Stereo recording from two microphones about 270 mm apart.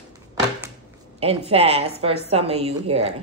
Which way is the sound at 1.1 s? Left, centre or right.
Right.